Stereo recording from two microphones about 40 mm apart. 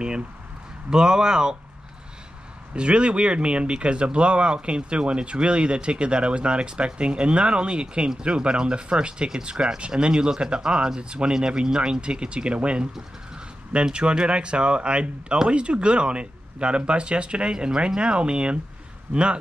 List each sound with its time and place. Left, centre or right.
0.8 s speech: centre
2.7 s speech: right
19.1 s speech: right